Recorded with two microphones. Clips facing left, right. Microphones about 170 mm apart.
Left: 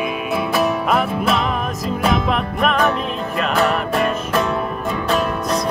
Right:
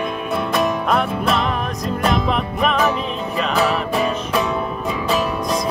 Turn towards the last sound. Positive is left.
turn(degrees=0)  # may be behind; listen again after turning